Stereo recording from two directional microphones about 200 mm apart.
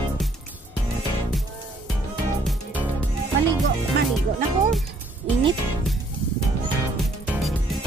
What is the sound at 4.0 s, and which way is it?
Music, 55° right (ahead or behind).